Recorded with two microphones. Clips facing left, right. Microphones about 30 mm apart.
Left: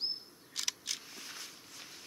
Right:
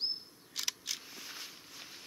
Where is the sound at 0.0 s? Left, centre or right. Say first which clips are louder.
Right 1 dB; centre.